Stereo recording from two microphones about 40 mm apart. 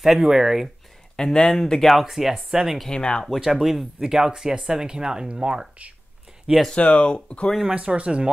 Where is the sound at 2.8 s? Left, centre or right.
Left.